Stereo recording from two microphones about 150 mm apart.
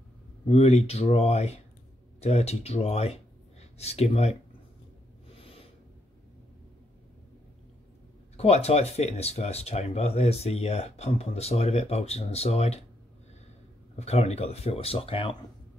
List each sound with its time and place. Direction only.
0.5 s speech: 45° left (ahead or behind)
5.4 s a sound: 40° left (ahead or behind)
8.4 s speech: 45° left (ahead or behind)
13.9 s speech: 45° left (ahead or behind)